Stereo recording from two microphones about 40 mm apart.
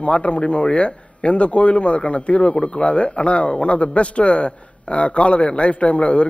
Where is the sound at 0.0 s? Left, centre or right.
Left.